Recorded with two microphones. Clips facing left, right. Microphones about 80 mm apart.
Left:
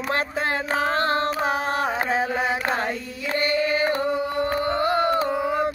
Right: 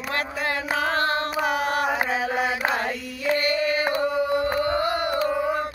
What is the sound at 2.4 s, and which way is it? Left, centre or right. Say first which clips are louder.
Chant: even; left.